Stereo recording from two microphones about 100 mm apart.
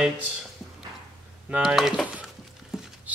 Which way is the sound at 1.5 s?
5° right (ahead or behind).